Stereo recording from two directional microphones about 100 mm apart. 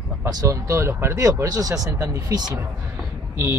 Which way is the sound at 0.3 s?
35° right (ahead or behind).